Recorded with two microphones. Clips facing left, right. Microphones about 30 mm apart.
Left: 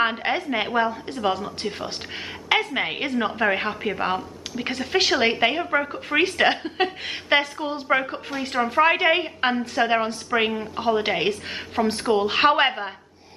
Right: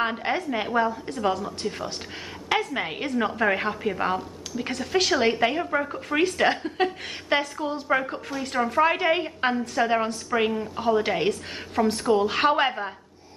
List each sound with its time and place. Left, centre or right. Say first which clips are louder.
0.0 s a woman's voice: left 3 dB; left